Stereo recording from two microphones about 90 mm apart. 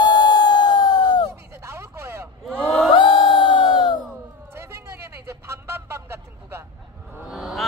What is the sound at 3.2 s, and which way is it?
Crowd, 60° left (ahead or behind).